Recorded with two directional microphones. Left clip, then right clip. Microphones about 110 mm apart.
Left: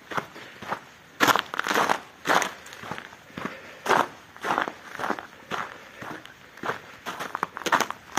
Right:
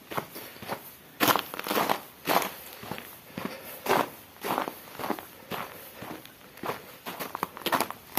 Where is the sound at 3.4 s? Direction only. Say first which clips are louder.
Left 3 dB; 5° left (ahead or behind).